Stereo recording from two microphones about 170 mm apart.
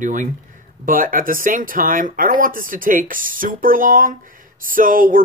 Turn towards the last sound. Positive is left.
turn(degrees=-55)  # may be behind; listen again after turning